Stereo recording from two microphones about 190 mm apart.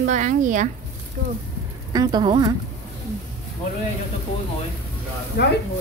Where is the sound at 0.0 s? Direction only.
40° right (ahead or behind).